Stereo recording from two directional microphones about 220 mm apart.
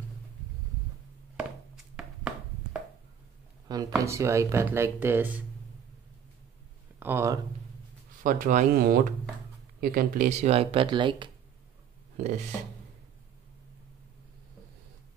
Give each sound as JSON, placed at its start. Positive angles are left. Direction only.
{"t": 2.0, "sound": "a sound", "side_deg": -5}
{"t": 3.7, "sound": "speech", "side_deg": -15}
{"t": 7.0, "sound": "speech", "side_deg": -10}
{"t": 8.2, "sound": "speech", "side_deg": -40}